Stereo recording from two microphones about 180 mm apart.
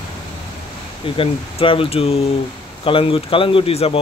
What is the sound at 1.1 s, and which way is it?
Speech, 30° left (ahead or behind).